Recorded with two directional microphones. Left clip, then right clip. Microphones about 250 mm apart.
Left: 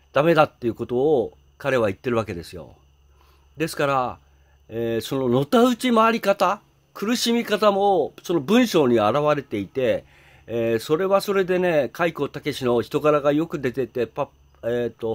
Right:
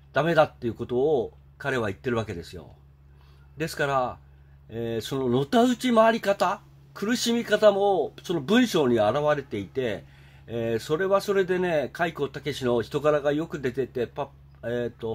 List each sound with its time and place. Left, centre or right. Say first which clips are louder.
0.1 s speech: left 4 dB; left